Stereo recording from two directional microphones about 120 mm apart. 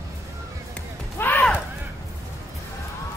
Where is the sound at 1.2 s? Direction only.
15° left (ahead or behind).